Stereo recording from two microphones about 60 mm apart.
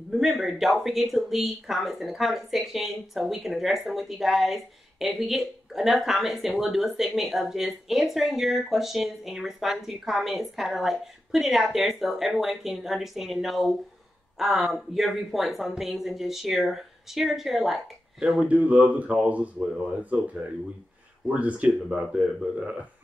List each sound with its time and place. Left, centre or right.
0.1 s speech: centre
18.4 s speech: right
21.4 s a man's voice: right